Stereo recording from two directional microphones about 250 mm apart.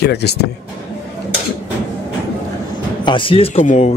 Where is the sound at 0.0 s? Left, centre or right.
Left.